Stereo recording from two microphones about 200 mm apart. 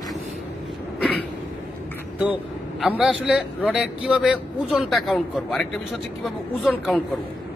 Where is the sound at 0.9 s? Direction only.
5° left (ahead or behind).